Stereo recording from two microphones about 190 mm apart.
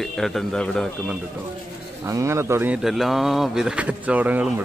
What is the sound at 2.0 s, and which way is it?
Speech, 15° right (ahead or behind).